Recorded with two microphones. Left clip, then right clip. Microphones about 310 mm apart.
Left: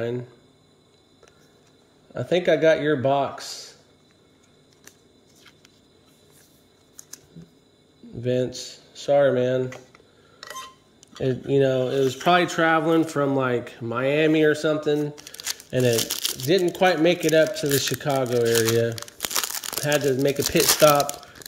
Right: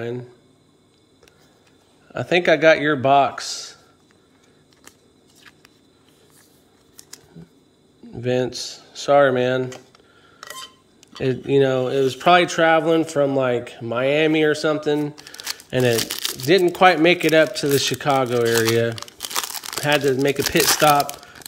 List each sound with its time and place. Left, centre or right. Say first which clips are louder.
0.0 s speech: left 1 dB; centre
2.1 s speech: right 3 dB; centre
8.1 s speech: right 3 dB; centre
11.0 s speech: right 3 dB; centre